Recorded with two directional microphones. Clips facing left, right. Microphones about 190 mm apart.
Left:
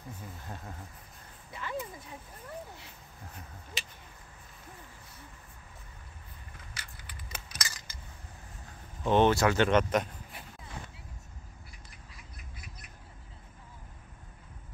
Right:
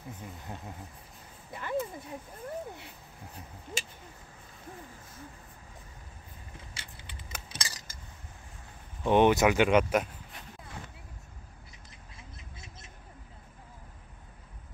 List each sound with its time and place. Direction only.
0.2 s speech: 15° right (ahead or behind)
1.5 s speech: 50° right (ahead or behind)
6.5 s keys jangling: 25° right (ahead or behind)
7.4 s a sound: 30° right (ahead or behind)
9.0 s speech: 15° right (ahead or behind)
12.2 s duck: 25° right (ahead or behind)